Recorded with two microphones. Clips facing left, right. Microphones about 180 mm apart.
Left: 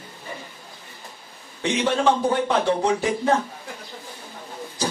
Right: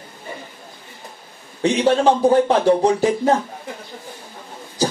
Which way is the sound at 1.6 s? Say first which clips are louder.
Right 6 dB; 35° right (ahead or behind).